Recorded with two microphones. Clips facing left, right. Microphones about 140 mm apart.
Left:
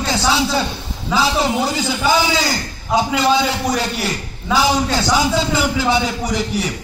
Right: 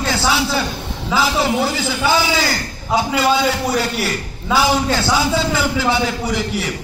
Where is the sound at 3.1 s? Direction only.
5° right (ahead or behind).